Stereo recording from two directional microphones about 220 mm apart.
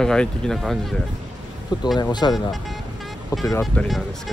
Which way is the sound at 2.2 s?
20° left (ahead or behind).